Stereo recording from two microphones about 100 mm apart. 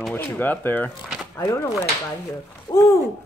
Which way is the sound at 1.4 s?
30° left (ahead or behind).